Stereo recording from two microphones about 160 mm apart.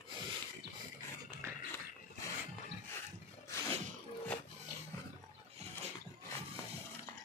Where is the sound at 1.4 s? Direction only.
15° right (ahead or behind).